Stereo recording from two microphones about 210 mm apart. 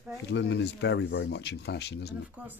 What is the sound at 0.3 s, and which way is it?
Speech, 55° left (ahead or behind).